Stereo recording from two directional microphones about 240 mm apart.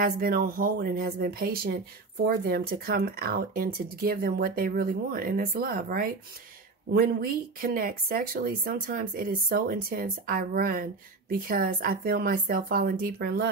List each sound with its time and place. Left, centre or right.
0.0 s speech: right